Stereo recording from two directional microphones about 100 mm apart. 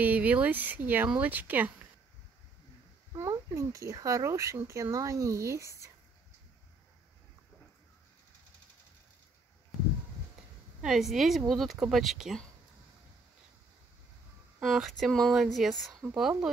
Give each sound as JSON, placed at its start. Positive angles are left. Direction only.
{"t": 0.0, "sound": "speech", "side_deg": -15}
{"t": 3.3, "sound": "speech", "side_deg": -30}
{"t": 10.8, "sound": "speech", "side_deg": -5}
{"t": 14.6, "sound": "speech", "side_deg": 0}